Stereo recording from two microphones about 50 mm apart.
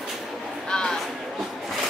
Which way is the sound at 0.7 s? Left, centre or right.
Centre.